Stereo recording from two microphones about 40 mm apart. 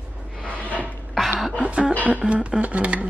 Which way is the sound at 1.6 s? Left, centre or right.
Right.